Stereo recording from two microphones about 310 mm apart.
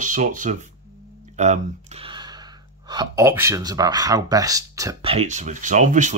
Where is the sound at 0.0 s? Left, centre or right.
Right.